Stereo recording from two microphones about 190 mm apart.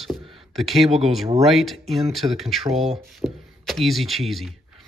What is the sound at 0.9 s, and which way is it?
Speech, 35° right (ahead or behind).